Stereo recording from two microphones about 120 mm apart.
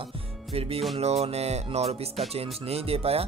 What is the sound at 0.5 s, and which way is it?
Music, 55° right (ahead or behind).